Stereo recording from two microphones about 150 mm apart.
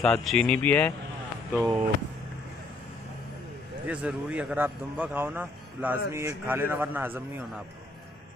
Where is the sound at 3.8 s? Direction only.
5° right (ahead or behind).